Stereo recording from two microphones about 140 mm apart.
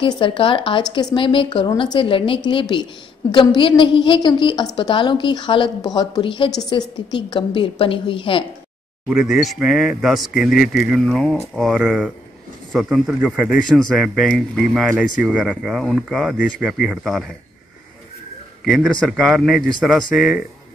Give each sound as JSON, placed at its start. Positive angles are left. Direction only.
{"t": 0.0, "sound": "a woman's voice", "side_deg": 35}
{"t": 9.1, "sound": "speech", "side_deg": -5}
{"t": 18.9, "sound": "speech", "side_deg": 0}